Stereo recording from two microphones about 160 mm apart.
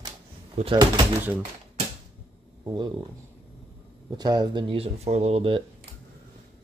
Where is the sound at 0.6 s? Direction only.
45° right (ahead or behind).